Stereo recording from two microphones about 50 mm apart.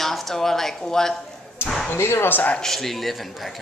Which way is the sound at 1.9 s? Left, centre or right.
Left.